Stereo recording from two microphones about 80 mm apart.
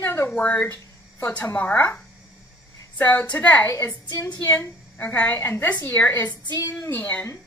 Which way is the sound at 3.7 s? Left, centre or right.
Left.